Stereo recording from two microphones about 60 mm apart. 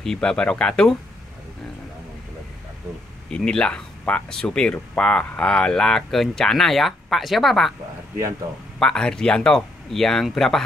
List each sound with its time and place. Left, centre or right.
0.0 s speech: centre
3.3 s speech: centre
8.7 s speech: centre